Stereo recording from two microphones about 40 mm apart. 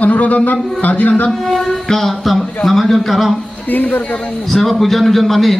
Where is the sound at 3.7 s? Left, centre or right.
Left.